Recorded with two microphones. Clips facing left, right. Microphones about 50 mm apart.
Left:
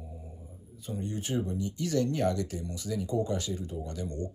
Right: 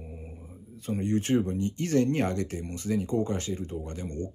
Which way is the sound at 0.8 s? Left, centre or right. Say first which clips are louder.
Right 8 dB; right.